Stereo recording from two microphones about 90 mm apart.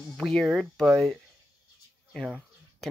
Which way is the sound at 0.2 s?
5° left (ahead or behind).